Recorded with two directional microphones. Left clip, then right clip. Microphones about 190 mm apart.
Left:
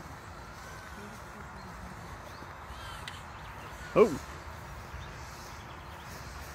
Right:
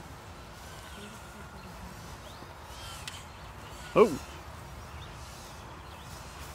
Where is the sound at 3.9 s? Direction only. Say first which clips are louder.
Right 1 dB; 15° right (ahead or behind).